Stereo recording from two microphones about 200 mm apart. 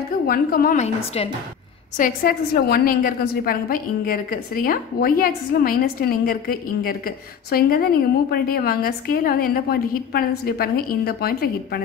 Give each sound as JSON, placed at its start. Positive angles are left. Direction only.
{"t": 0.3, "sound": "a woman's voice", "side_deg": 45}
{"t": 2.0, "sound": "a woman's voice", "side_deg": 45}